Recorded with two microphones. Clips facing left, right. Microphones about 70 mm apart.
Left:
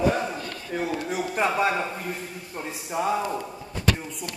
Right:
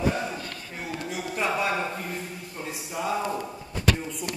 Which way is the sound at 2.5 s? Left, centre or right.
Left.